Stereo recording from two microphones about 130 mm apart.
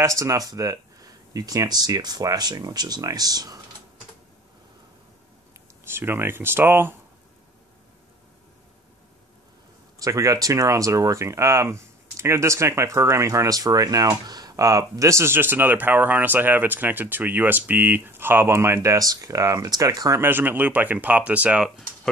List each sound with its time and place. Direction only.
0.0 s speech: 25° right (ahead or behind)
5.9 s speech: 20° right (ahead or behind)
9.9 s speech: 25° right (ahead or behind); by 22.1 s centre (ahead or behind)